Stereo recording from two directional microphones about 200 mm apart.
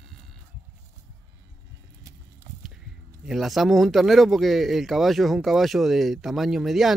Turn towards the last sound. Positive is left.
turn(degrees=0)  # may be behind; listen again after turning